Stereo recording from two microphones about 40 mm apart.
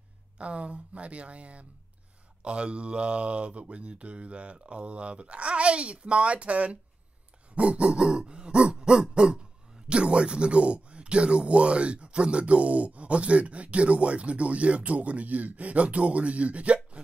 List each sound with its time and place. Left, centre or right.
0.4 s speech: right
2.4 s throat clearing: right